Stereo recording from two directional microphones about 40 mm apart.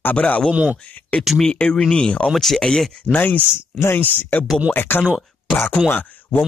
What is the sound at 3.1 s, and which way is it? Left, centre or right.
Speech, left.